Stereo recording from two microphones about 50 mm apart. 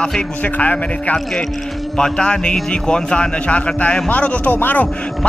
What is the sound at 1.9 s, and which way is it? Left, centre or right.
A man's voice, centre.